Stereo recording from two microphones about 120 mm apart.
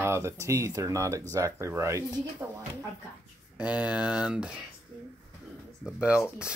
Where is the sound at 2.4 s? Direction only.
20° right (ahead or behind).